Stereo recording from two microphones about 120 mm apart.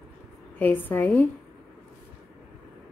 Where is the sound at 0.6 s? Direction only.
15° left (ahead or behind).